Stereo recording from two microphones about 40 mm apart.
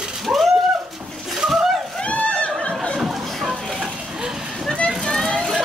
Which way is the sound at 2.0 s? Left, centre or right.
Left.